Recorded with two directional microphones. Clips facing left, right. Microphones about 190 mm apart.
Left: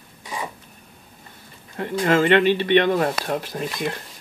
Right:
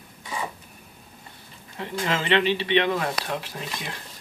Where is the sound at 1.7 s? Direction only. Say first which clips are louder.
Left 8 dB; 50° left (ahead or behind).